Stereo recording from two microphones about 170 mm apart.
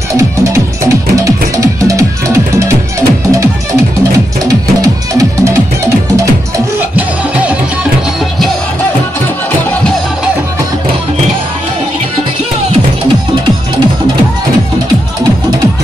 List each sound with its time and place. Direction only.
0.1 s music: 20° right (ahead or behind)
4.5 s music: 20° right (ahead or behind)